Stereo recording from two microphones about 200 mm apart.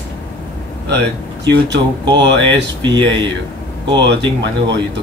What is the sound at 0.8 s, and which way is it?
Speech, 60° right (ahead or behind).